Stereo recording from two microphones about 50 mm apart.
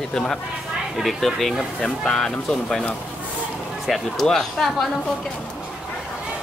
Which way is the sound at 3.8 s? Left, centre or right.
Centre.